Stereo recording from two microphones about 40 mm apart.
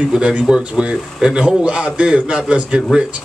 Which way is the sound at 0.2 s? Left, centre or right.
Right.